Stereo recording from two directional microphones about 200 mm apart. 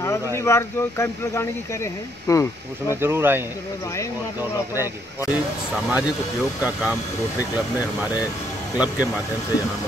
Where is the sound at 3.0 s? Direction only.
10° right (ahead or behind).